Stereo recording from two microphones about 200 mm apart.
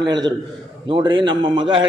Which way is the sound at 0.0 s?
20° right (ahead or behind).